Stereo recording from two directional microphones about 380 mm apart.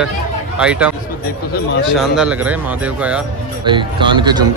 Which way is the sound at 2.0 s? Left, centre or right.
Centre.